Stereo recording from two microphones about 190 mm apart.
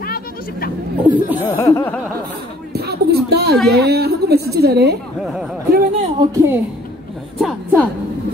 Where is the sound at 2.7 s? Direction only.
55° right (ahead or behind).